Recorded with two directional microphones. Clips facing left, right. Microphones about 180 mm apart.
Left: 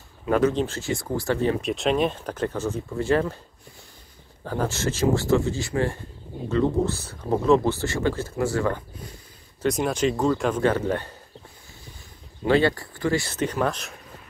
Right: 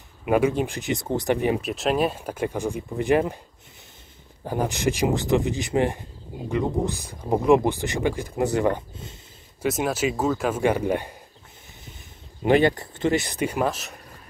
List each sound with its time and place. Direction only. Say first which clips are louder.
0.2 s speech: even; 10° right (ahead or behind)
1.6 s speech: even; centre (ahead or behind)
4.5 s speech: right 2 dB; 15° right (ahead or behind)
9.6 s speech: left 1 dB; 5° right (ahead or behind)
12.4 s speech: right 1 dB; 20° right (ahead or behind)